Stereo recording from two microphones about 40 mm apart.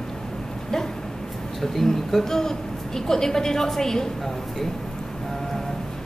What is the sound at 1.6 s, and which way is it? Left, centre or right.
A woman's voice, centre.